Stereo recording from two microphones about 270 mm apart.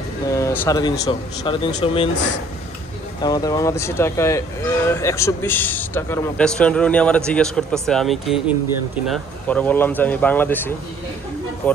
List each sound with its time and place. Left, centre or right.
0.3 s speech: centre
3.2 s speech: centre